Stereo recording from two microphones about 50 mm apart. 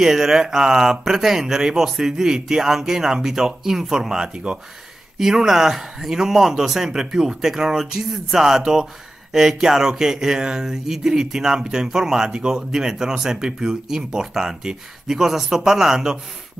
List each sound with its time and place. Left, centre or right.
0.0 s speech: centre
4.3 s speech: right
5.2 s speech: centre